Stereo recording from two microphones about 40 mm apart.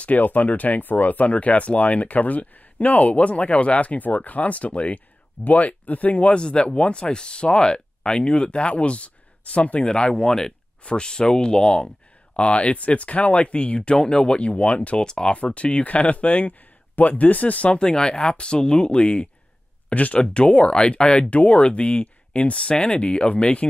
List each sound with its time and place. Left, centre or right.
0.0 s speech: left
6.2 s speech: left
12.4 s speech: left
15.0 s speech: centre
15.3 s speech: left
17.7 s speech: left
19.9 s speech: left
20.2 s speech: left